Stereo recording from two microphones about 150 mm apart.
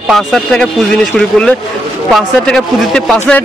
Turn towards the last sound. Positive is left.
turn(degrees=5)  # may be behind; listen again after turning